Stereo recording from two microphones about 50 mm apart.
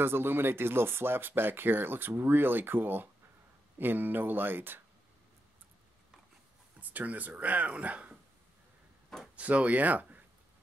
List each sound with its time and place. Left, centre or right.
0.0 s speech: right
6.8 s speech: right
9.4 s speech: right